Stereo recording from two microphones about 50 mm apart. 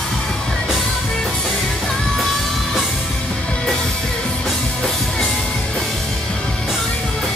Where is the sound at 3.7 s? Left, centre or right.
Centre.